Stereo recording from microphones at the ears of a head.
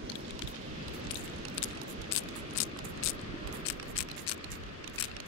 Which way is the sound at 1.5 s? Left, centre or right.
Left.